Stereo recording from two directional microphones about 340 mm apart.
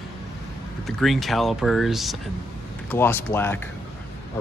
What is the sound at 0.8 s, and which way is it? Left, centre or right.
Speech, centre.